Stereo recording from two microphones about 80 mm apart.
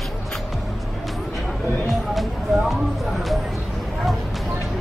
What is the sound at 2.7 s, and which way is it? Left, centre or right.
Music, centre.